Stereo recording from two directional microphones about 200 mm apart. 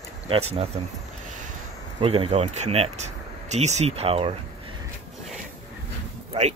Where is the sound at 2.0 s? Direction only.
30° right (ahead or behind).